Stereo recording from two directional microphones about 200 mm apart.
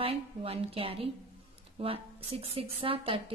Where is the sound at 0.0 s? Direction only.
30° right (ahead or behind).